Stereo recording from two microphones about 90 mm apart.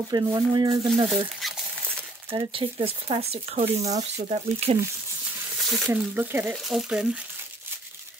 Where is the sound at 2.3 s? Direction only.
85° right.